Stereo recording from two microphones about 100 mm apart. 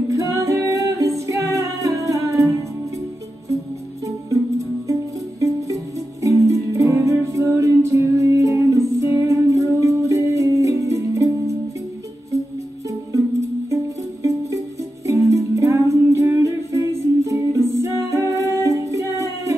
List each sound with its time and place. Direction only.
0.1 s music: 30° right (ahead or behind)
4.0 s music: 35° right (ahead or behind)
12.8 s music: 30° right (ahead or behind)